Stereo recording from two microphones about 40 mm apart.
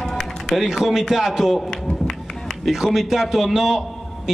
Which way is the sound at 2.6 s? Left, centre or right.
Centre.